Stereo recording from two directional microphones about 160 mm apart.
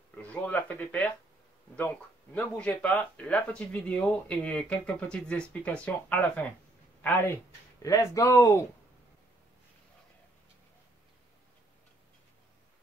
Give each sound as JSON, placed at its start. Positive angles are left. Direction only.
{"t": 0.2, "sound": "speech", "side_deg": 10}